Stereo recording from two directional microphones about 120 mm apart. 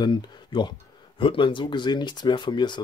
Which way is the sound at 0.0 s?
35° left (ahead or behind).